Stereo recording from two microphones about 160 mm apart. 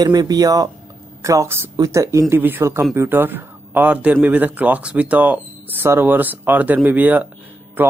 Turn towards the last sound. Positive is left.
turn(degrees=-10)  # may be behind; listen again after turning